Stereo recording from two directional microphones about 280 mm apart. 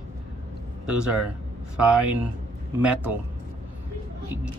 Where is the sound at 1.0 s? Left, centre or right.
Centre.